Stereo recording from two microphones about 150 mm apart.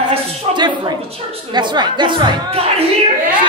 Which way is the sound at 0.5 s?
30° right (ahead or behind).